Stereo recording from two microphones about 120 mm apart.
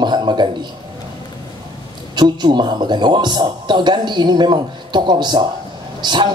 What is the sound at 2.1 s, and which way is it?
Speech, 40° right (ahead or behind).